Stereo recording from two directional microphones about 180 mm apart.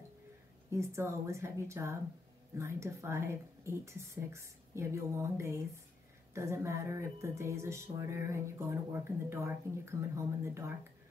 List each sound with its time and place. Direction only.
0.7 s speech: 15° right (ahead or behind)